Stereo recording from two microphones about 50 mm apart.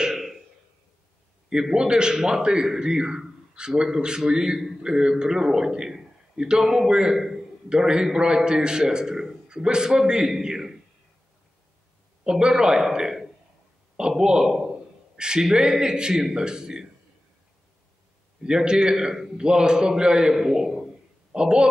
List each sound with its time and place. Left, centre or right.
0.0 s a sound: centre
1.5 s a man's voice: centre
12.3 s a man's voice: centre
14.5 s a sound: centre
15.1 s a man's voice: centre
18.4 s a man's voice: centre